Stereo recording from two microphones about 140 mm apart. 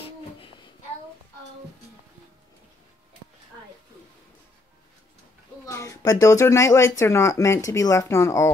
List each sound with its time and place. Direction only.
5.7 s speech: 20° left (ahead or behind)